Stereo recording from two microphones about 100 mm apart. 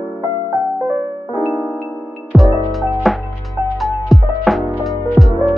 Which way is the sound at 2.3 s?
5° left (ahead or behind).